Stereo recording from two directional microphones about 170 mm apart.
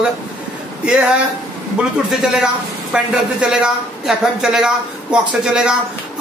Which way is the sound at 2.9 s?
5° right (ahead or behind).